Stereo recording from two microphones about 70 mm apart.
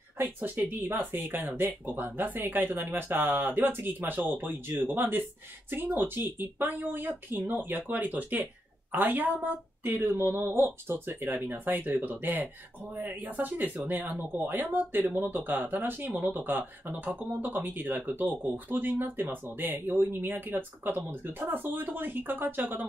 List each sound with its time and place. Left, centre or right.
0.2 s speech: right